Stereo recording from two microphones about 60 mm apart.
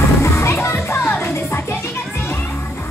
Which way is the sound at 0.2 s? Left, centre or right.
Left.